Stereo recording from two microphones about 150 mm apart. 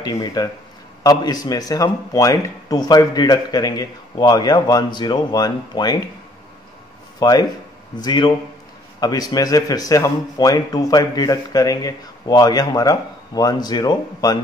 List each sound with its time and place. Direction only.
0.0 s speech: 25° left (ahead or behind)
7.2 s speech: 25° left (ahead or behind)